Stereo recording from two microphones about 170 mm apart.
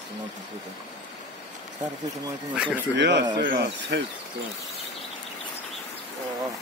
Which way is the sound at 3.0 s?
90° right.